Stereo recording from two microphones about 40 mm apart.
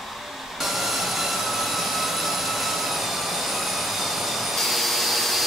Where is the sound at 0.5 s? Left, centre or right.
Centre.